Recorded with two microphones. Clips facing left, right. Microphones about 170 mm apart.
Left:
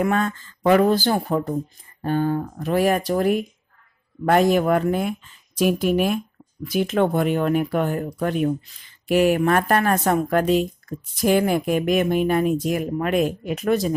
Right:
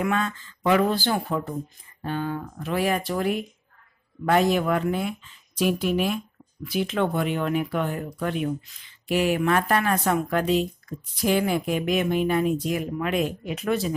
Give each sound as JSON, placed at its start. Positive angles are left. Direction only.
{"t": 0.0, "sound": "a woman's voice", "side_deg": 45}